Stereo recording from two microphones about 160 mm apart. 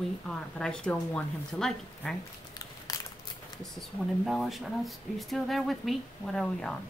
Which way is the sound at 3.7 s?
Centre (ahead or behind).